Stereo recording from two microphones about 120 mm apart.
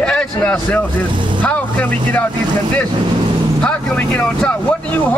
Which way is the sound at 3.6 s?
10° left (ahead or behind).